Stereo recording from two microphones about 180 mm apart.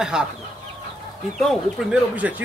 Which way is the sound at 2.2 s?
10° right (ahead or behind).